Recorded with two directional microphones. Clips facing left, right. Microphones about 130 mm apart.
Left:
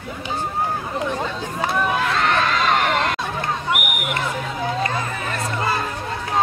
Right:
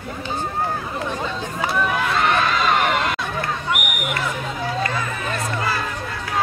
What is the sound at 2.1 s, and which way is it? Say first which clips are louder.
Crowd: right 1 dB; 10° right (ahead or behind).